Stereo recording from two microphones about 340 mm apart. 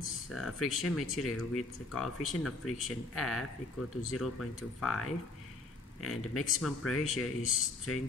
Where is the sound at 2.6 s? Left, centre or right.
Left.